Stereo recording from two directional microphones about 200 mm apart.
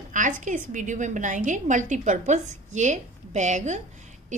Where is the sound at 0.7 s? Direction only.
40° right (ahead or behind).